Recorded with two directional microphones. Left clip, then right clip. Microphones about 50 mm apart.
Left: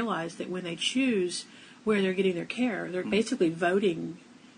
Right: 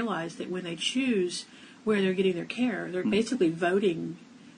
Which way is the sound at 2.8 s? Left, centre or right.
Centre.